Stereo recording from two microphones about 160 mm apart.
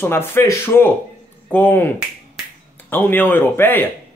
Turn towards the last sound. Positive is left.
turn(degrees=15)  # may be behind; listen again after turning